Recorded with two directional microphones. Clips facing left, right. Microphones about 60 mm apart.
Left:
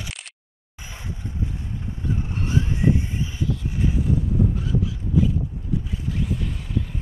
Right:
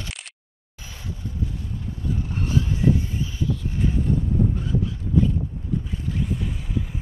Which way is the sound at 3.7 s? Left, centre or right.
Centre.